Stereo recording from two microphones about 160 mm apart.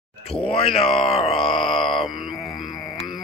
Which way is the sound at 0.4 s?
35° left (ahead or behind).